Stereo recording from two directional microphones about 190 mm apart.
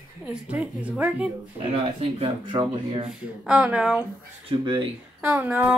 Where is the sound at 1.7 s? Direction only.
30° right (ahead or behind).